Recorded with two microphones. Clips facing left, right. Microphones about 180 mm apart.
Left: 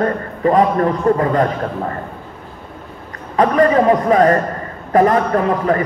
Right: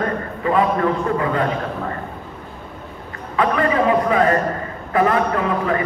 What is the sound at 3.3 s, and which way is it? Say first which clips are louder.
A man's voice: left 6 dB; 40° left (ahead or behind).